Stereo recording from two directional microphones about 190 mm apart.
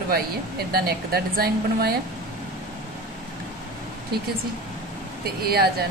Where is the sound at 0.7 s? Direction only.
55° right (ahead or behind).